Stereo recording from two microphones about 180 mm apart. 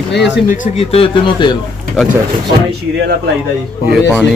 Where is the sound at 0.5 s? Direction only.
35° left (ahead or behind).